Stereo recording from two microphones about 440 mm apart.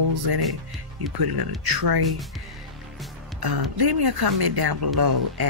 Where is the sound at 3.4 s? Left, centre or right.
Right.